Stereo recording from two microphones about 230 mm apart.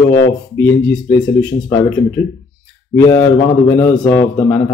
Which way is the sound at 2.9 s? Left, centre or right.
Centre.